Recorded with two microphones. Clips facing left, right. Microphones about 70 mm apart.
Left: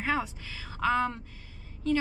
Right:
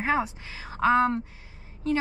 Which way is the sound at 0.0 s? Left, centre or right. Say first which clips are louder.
Right 4 dB; right.